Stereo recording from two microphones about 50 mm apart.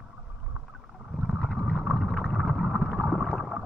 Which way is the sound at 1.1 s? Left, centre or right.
Centre.